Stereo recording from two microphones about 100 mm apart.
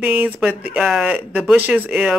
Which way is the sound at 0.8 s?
5° right (ahead or behind).